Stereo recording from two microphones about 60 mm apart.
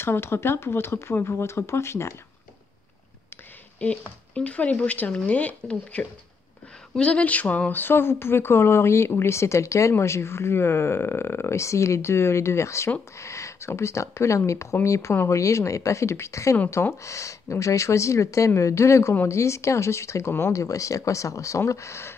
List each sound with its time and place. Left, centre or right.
0.0 s speech: left
4.4 s speech: left
7.8 s speech: left
20.5 s speech: left